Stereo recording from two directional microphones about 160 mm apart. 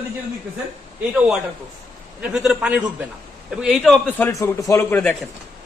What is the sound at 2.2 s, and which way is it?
A man's voice, 5° right (ahead or behind).